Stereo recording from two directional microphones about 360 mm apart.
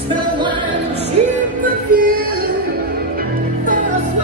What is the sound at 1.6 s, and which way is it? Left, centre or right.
Music, right.